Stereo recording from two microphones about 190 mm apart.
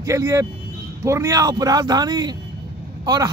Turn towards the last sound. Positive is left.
turn(degrees=-20)  # may be behind; listen again after turning